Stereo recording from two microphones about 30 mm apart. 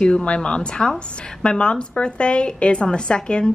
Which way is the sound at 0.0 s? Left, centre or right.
Left.